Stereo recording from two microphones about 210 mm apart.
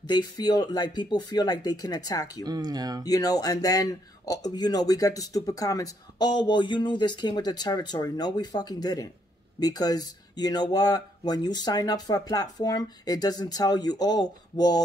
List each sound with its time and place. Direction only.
0.0 s speech: 20° left (ahead or behind)
2.4 s speech: 20° right (ahead or behind)
3.1 s speech: 15° left (ahead or behind)